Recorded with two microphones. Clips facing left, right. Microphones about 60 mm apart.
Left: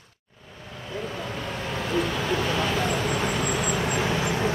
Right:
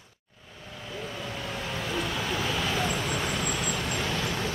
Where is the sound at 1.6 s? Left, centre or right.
Centre; by 4.5 s left.